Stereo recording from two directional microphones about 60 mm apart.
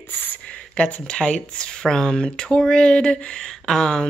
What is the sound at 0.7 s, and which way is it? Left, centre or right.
Speech, centre.